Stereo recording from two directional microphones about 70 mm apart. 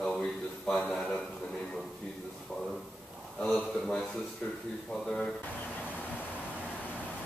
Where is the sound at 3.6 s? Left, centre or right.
Centre.